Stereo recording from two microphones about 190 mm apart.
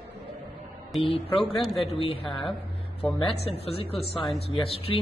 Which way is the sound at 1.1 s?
30° left (ahead or behind).